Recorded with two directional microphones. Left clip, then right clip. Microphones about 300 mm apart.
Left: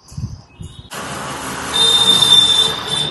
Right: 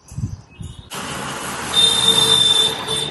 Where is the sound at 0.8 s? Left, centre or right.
Left.